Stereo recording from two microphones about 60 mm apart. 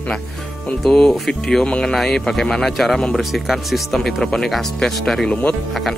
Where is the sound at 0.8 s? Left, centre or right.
Centre.